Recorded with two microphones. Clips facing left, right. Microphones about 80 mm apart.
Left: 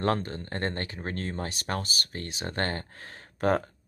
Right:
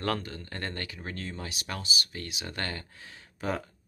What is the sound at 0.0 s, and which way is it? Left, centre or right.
Speech, left.